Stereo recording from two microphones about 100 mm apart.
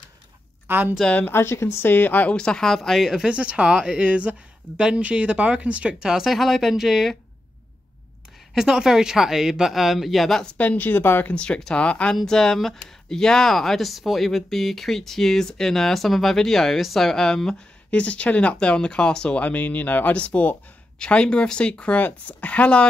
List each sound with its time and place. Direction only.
0.7 s speech: 20° right (ahead or behind)
0.9 s speech: 5° left (ahead or behind)
1.2 s speech: 25° left (ahead or behind); by 7.2 s centre (ahead or behind)
8.5 s speech: 5° right (ahead or behind)
10.6 s speech: 15° left (ahead or behind)